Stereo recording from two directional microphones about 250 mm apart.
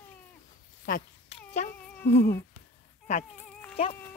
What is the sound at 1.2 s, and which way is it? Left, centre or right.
Cat, left.